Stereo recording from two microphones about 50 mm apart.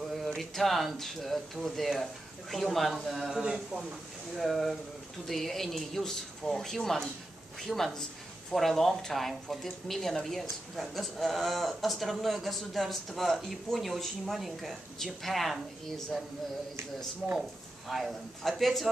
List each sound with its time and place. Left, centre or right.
0.0 s a sound: centre
0.4 s speech: centre
3.3 s speech: centre
4.4 s speech: centre
17.2 s speech: right
17.8 s speech: centre